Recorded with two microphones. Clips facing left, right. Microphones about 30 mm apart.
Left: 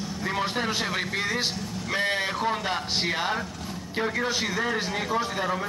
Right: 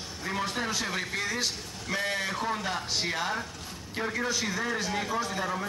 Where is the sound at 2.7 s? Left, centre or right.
Left.